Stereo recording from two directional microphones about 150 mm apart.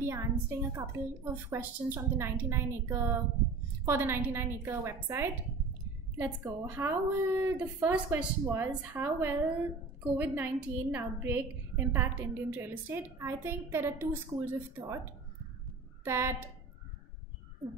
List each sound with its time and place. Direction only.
0.0 s a woman's voice: 20° right (ahead or behind)
16.0 s a woman's voice: 15° right (ahead or behind)